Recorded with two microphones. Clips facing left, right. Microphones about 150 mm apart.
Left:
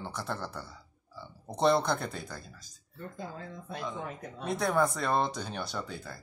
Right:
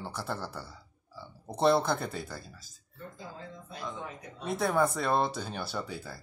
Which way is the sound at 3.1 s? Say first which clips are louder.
Left 4 dB; 55° left (ahead or behind).